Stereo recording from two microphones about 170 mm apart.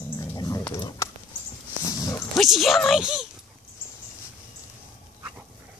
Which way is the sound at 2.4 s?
Centre (ahead or behind).